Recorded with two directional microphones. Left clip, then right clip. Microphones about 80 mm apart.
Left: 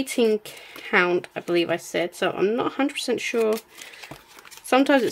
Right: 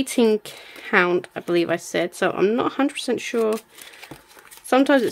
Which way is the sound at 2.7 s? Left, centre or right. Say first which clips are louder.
Right 2 dB; right.